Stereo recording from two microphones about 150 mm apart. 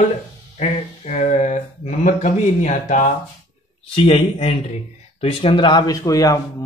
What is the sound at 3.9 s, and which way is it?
A man's voice, 40° left (ahead or behind).